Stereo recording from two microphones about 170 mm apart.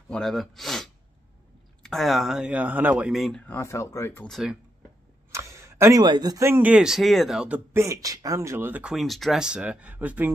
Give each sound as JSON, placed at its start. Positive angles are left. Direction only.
{"t": 0.1, "sound": "speech", "side_deg": 0}
{"t": 3.5, "sound": "speech", "side_deg": 15}
{"t": 4.3, "sound": "speech", "side_deg": 0}
{"t": 5.3, "sound": "speech", "side_deg": -15}